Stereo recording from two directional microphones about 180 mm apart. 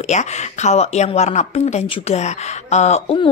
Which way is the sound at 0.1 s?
40° left (ahead or behind).